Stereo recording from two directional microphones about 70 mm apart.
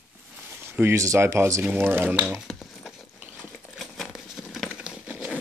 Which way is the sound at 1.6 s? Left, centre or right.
Right.